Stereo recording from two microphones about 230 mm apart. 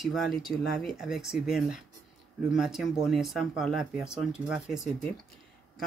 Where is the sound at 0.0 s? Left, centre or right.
Centre.